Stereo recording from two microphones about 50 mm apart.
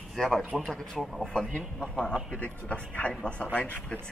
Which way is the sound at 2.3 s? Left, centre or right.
Left.